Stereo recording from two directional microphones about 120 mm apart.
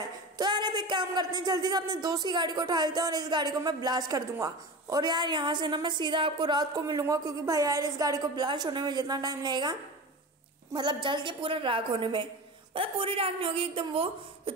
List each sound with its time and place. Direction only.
0.4 s a woman's voice: 40° right (ahead or behind)